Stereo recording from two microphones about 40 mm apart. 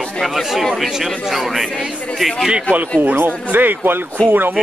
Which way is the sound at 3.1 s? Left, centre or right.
Right.